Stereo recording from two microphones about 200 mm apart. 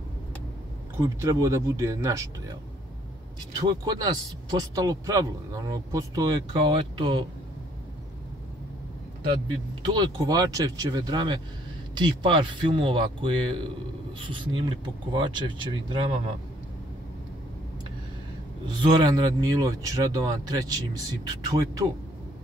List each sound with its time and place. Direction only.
0.9 s speech: 15° right (ahead or behind)
3.6 s speech: 20° right (ahead or behind)
9.8 s speech: 20° right (ahead or behind)
18.7 s speech: 20° right (ahead or behind)